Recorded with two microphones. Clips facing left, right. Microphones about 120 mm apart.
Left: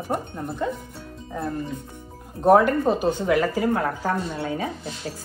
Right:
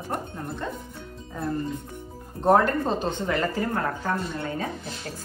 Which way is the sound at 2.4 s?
5° left (ahead or behind).